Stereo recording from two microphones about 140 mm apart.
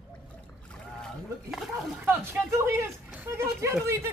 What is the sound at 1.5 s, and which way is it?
Speech, 10° right (ahead or behind).